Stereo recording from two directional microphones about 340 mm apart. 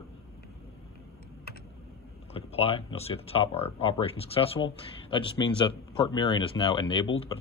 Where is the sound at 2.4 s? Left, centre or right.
Centre.